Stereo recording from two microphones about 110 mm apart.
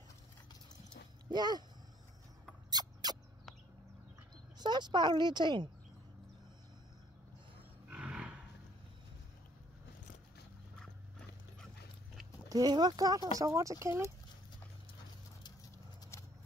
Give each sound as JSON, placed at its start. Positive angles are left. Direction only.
{"t": 1.3, "sound": "speech", "side_deg": -40}
{"t": 2.7, "sound": "rodents", "side_deg": -40}
{"t": 4.6, "sound": "speech", "side_deg": -40}
{"t": 7.9, "sound": "roar", "side_deg": -10}
{"t": 12.4, "sound": "speech", "side_deg": -35}
{"t": 16.1, "sound": "a sound", "side_deg": 25}